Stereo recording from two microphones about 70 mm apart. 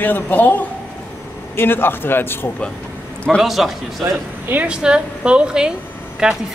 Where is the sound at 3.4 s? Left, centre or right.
Centre.